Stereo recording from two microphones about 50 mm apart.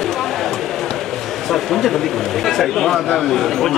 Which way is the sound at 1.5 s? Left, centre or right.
Centre.